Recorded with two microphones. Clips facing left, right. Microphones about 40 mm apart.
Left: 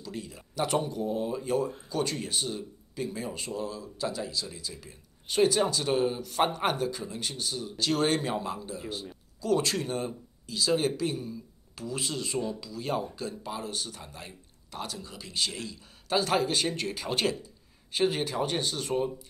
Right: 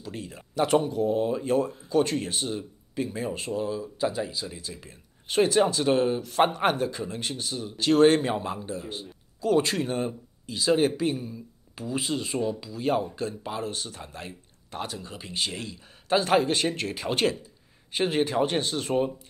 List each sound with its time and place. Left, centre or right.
0.0 s a man's voice: right; by 17.4 s centre
17.9 s speech: right